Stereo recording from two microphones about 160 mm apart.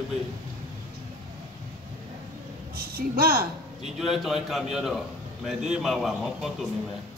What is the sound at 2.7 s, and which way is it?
Speech, 70° right (ahead or behind).